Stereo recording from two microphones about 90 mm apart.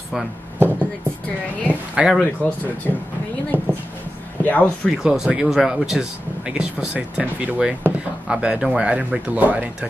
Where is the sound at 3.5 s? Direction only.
20° right (ahead or behind).